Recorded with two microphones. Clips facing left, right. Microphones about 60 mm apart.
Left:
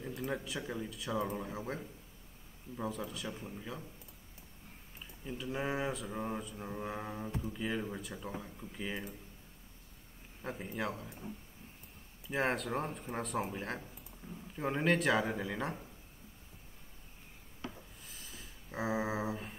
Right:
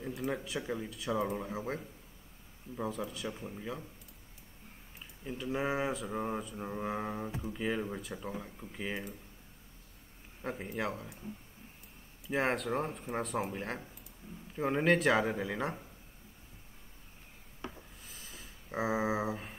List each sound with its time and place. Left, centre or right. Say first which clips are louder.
0.0 s speech: right 2 dB; centre
5.2 s speech: right 3 dB; centre
6.1 s speech: right 3 dB; centre
10.4 s speech: right 2 dB; centre
12.3 s speech: right 2 dB; centre
18.0 s a sound: right 1 dB; centre